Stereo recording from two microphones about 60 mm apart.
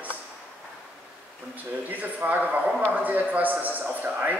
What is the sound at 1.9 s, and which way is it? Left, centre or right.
A man's voice, right.